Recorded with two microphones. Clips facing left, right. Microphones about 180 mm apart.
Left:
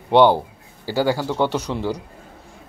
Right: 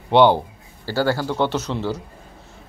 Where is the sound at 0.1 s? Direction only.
10° left (ahead or behind).